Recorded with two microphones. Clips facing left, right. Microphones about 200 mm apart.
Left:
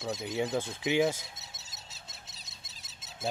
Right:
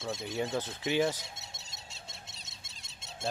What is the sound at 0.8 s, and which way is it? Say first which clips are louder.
Speech: left 2 dB; 15° left (ahead or behind).